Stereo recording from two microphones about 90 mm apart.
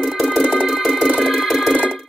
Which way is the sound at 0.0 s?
Centre (ahead or behind).